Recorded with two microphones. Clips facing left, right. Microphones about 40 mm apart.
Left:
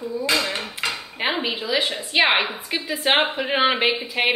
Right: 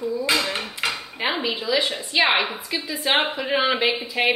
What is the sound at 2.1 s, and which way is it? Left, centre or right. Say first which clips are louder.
A woman's voice: left 1 dB; left.